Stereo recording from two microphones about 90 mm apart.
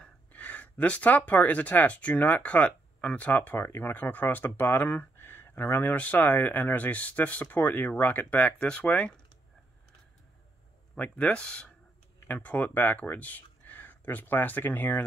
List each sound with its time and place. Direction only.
0.0 s speech: 15° left (ahead or behind)
11.0 s speech: 15° left (ahead or behind)